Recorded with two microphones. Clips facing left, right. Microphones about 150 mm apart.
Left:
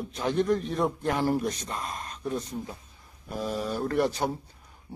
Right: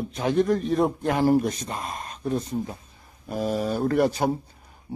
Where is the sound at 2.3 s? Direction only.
25° right (ahead or behind).